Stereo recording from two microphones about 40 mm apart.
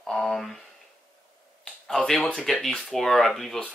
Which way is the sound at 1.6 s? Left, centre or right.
Centre.